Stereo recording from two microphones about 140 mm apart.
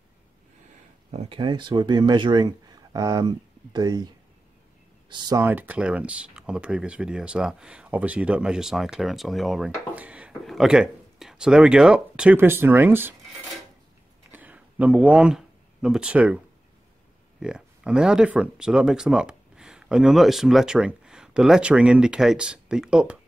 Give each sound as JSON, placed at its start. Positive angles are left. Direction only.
{"t": 1.1, "sound": "speech", "side_deg": -50}
{"t": 1.4, "sound": "speech", "side_deg": -35}
{"t": 5.1, "sound": "speech", "side_deg": -30}
{"t": 5.4, "sound": "speech", "side_deg": -15}
{"t": 14.3, "sound": "a sound", "side_deg": -10}
{"t": 17.4, "sound": "speech", "side_deg": -5}